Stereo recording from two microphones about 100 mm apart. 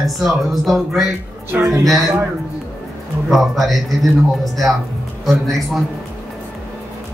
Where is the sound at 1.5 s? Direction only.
15° right (ahead or behind).